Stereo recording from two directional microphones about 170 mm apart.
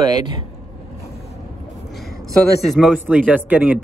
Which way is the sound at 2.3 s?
Centre (ahead or behind).